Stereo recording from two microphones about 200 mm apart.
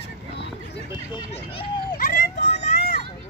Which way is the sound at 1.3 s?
25° left (ahead or behind).